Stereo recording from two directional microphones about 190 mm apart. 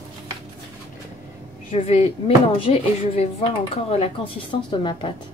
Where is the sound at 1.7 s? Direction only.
35° left (ahead or behind).